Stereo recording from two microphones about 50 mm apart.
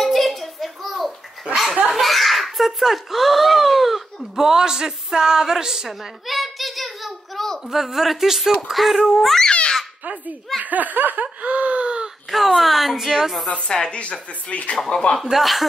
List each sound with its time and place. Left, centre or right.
0.0 s a sound: centre
7.7 s speech: centre
9.5 s babbling: centre
10.6 s laughter: right
12.3 s speech: centre
13.5 s speech: centre
15.2 s speech: centre